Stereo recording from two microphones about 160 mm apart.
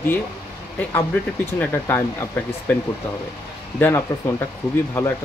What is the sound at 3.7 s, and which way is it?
Speech, 10° left (ahead or behind).